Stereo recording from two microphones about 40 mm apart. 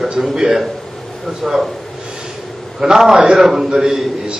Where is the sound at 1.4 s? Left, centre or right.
Centre.